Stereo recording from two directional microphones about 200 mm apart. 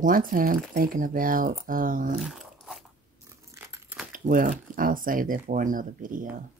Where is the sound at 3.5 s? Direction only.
15° right (ahead or behind).